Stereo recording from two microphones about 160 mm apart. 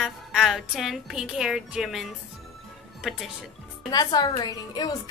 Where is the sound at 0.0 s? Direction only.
Centre (ahead or behind).